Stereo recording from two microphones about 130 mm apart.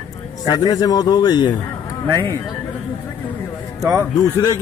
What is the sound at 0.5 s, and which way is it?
A man's voice, 30° left (ahead or behind).